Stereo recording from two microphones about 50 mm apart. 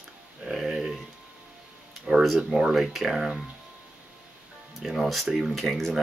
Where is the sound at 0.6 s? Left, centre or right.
Centre.